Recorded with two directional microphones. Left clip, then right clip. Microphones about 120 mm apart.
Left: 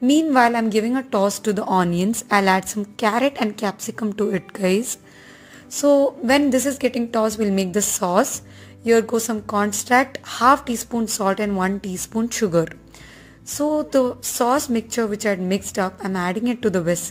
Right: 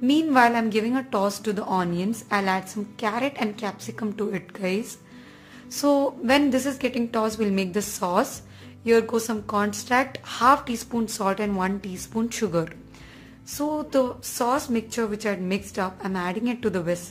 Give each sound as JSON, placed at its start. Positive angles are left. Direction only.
{"t": 0.0, "sound": "a woman's voice", "side_deg": 40}
{"t": 5.8, "sound": "a woman's voice", "side_deg": 25}
{"t": 6.2, "sound": "speech", "side_deg": 35}